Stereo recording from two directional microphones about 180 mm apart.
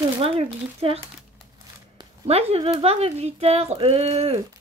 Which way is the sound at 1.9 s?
35° right (ahead or behind).